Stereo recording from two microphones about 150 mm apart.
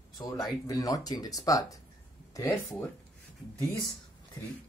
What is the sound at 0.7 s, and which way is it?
Speech, 25° left (ahead or behind).